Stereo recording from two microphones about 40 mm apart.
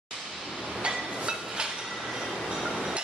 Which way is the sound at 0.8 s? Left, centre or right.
Centre.